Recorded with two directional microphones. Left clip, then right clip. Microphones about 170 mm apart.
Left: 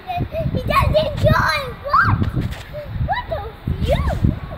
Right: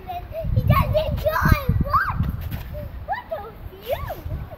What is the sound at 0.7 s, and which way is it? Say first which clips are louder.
Children playing: left 5 dB; 20° left (ahead or behind).